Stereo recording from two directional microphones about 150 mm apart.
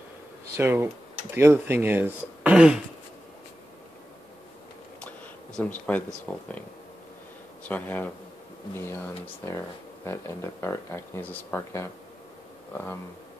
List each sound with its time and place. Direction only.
0.6 s speech: 15° right (ahead or behind)
5.0 s a sound: 10° left (ahead or behind)
6.3 s speech: 10° left (ahead or behind)
7.6 s speech: 10° left (ahead or behind)